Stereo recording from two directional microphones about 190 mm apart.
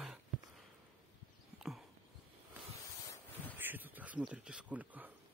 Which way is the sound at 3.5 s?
10° right (ahead or behind).